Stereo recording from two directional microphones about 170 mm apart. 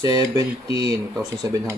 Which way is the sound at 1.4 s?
20° right (ahead or behind).